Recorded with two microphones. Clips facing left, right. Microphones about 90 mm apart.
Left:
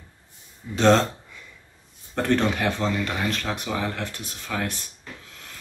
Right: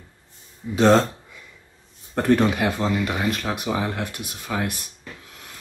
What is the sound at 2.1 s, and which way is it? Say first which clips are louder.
Speech: right 3 dB; 10° right (ahead or behind).